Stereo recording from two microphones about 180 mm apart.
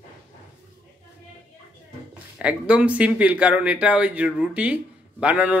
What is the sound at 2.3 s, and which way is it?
A man's voice, 5° right (ahead or behind).